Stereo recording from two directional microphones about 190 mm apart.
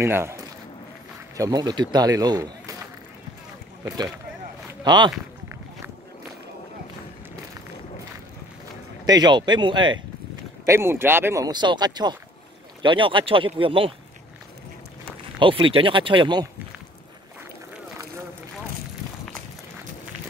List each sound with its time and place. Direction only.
0.0 s a man's voice: 15° right (ahead or behind)
4.8 s speech: 25° right (ahead or behind)
9.0 s a man's voice: 20° right (ahead or behind)
10.6 s a man's voice: 15° right (ahead or behind)
15.3 s a man's voice: 25° right (ahead or behind)